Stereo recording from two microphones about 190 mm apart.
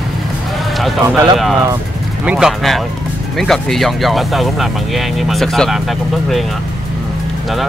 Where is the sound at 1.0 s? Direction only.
15° right (ahead or behind).